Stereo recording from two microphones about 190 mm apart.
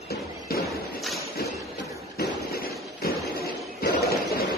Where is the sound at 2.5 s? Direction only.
55° left (ahead or behind).